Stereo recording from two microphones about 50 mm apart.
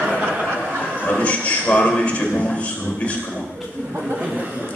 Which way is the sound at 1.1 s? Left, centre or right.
Left.